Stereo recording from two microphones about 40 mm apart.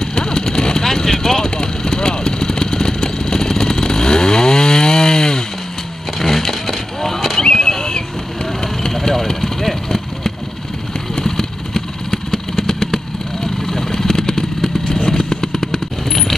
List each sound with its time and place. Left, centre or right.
0.0 s vehicle: centre
7.4 s a sound: centre
9.1 s engine: centre
11.1 s vehicle: centre